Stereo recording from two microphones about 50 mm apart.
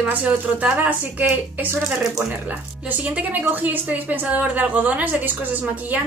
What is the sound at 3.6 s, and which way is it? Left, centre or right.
A woman's voice, right.